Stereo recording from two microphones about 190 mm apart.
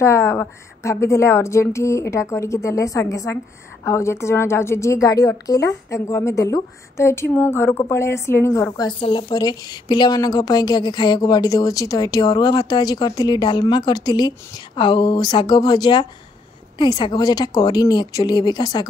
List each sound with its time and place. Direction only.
0.0 s a woman's voice: 15° left (ahead or behind)